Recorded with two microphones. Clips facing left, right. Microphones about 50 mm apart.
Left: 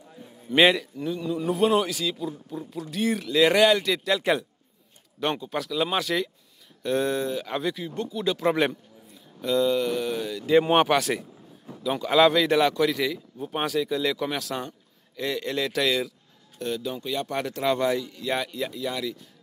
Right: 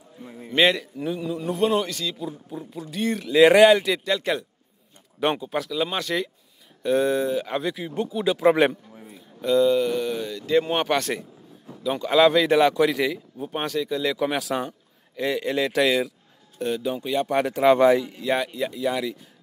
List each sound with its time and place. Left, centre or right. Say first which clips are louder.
0.2 s a sound: right 10 dB; right
0.5 s a man's voice: left 1 dB; centre
0.9 s speech: right 1 dB; centre
1.3 s a man's voice: left 1 dB; centre
2.2 s a man's voice: even; centre
3.3 s a man's voice: right 6 dB; centre
5.2 s speech: right 4 dB; centre
5.6 s a man's voice: even; centre
7.7 s speech: right 4 dB; centre
9.4 s a man's voice: right 4 dB; centre
10.5 s speech: left 3 dB; centre
10.9 s a man's voice: left 1 dB; centre
14.2 s a man's voice: right 5 dB; centre
18.2 s speech: right 4 dB; centre